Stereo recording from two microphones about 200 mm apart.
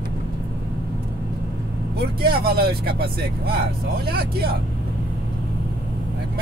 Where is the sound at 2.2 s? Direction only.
50° right (ahead or behind).